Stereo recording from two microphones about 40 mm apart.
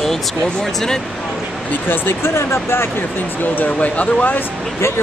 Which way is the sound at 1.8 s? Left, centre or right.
Left.